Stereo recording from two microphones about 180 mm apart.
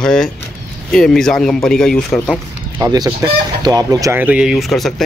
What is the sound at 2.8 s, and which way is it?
Speech, 20° right (ahead or behind).